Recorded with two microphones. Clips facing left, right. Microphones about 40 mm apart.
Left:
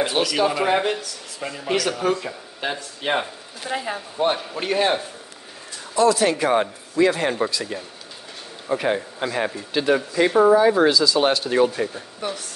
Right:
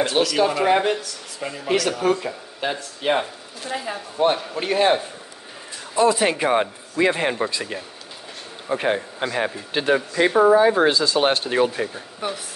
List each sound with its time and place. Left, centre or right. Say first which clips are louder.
0.0 s speech: right 1 dB; centre
3.6 s speech: left 1 dB; centre
3.9 s speech: right 3 dB; centre
5.9 s speech: even; right
12.2 s speech: right 1 dB; centre